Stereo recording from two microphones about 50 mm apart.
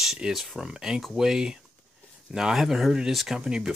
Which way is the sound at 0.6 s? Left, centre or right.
Centre.